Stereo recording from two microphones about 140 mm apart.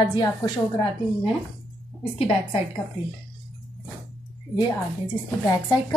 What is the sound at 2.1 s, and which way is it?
Speech, 40° left (ahead or behind).